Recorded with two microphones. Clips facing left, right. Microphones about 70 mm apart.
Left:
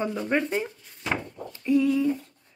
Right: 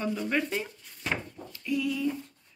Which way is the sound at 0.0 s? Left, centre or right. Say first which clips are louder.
Left 3 dB; left.